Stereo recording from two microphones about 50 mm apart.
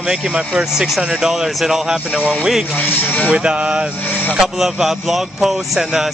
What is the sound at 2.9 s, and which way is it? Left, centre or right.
Speech, left.